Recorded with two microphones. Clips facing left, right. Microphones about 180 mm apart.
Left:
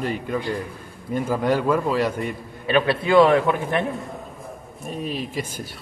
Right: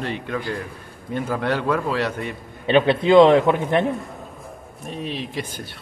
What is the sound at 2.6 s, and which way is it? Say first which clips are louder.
A man's voice: right 4 dB; 25° right (ahead or behind).